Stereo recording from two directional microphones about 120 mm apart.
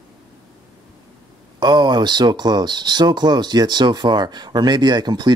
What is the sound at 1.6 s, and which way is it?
Speech, 40° right (ahead or behind).